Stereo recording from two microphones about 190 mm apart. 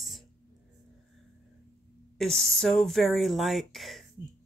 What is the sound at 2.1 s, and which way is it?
Speech, centre (ahead or behind).